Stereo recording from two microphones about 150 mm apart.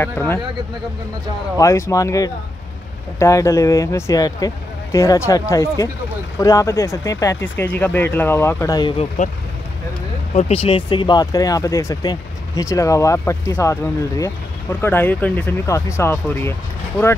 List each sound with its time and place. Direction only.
0.0 s speech: 15° left (ahead or behind)
1.6 s speech: 20° left (ahead or behind)
8.9 s speech: 45° left (ahead or behind)
10.3 s speech: 40° left (ahead or behind); by 16.5 s 15° left (ahead or behind)